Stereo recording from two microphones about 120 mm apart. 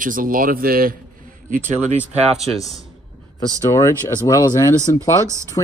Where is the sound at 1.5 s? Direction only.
10° left (ahead or behind).